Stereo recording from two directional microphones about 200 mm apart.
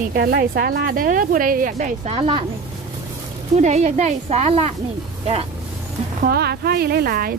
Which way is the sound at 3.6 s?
35° right (ahead or behind).